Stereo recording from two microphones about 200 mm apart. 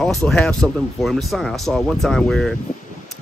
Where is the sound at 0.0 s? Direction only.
Centre (ahead or behind).